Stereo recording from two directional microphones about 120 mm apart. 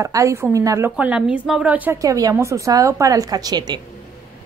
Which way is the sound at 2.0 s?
30° right (ahead or behind).